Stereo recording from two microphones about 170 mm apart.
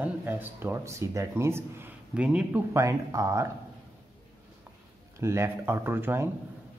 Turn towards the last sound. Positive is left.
turn(degrees=-15)  # may be behind; listen again after turning